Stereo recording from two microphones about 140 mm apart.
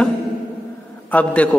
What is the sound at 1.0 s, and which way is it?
Speech, 10° left (ahead or behind).